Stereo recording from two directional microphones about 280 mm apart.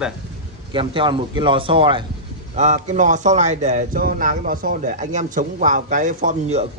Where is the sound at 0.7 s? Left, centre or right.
Centre.